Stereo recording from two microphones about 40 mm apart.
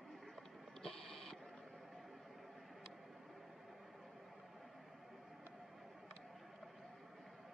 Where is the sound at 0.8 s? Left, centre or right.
Centre.